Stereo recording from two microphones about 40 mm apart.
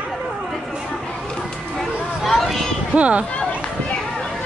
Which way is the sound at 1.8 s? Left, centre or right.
Centre.